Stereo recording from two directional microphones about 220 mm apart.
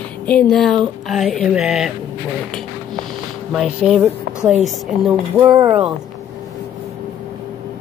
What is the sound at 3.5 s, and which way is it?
Speech, centre (ahead or behind).